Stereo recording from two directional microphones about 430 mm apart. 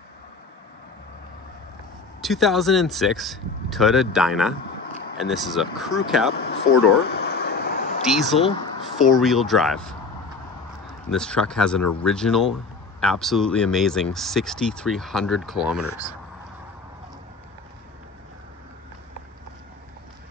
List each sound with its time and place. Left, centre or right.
2.2 s speech: centre
6.3 s speech: left
7.1 s vehicle: left
8.0 s speech: centre
11.1 s speech: centre